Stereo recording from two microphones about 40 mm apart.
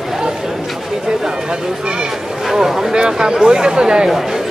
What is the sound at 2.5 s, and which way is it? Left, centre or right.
Boat, centre.